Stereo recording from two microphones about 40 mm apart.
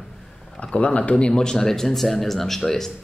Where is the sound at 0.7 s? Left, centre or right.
Left.